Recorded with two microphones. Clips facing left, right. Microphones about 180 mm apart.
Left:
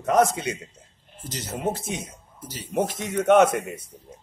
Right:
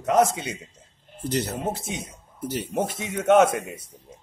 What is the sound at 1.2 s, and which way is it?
Speech, 60° right (ahead or behind).